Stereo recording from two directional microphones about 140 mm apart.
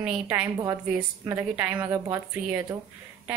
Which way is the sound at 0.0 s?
10° right (ahead or behind).